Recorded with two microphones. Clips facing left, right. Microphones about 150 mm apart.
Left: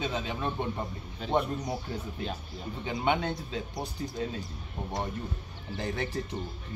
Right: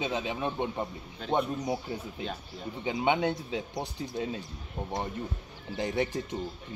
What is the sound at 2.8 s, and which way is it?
A man's voice, 15° right (ahead or behind).